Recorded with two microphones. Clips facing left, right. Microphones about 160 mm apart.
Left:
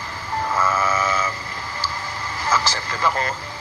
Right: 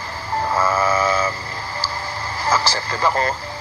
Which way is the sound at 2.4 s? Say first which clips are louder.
Right 2 dB; 35° right (ahead or behind).